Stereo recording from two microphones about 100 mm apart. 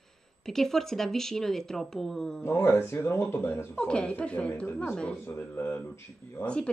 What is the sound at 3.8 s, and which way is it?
Speech, 10° left (ahead or behind).